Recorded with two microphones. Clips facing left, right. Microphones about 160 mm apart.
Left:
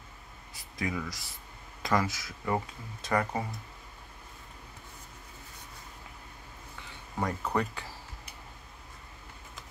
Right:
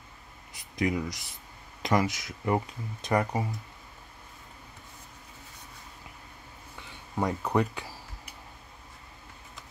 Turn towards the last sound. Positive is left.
turn(degrees=-15)  # may be behind; listen again after turning